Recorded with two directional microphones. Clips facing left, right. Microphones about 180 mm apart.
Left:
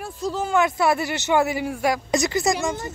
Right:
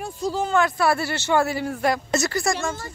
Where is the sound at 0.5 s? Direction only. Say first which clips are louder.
Left 1 dB; 20° left (ahead or behind).